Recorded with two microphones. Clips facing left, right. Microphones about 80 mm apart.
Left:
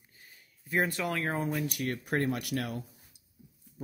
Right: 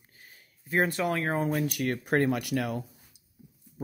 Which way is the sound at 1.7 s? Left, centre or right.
Right.